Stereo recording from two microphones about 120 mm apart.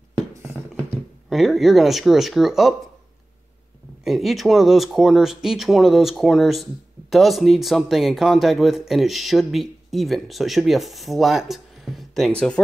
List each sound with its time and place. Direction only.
1.3 s speech: centre (ahead or behind)
4.0 s speech: centre (ahead or behind)